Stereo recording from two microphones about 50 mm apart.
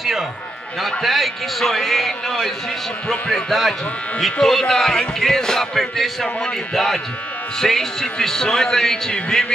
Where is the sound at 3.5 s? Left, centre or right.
Centre.